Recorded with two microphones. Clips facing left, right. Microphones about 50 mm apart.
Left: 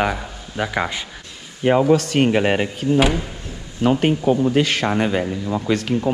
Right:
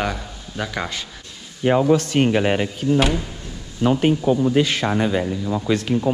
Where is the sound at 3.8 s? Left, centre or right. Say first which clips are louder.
Left 1 dB; left.